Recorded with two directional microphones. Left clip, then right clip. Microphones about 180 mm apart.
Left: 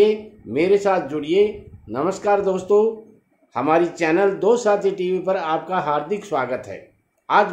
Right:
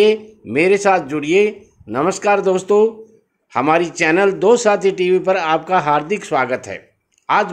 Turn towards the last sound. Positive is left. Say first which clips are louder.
# right 1 dB
turn(degrees=-40)  # may be behind; listen again after turning